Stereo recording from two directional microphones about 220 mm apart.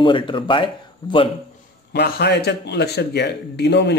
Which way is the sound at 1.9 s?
50° left (ahead or behind).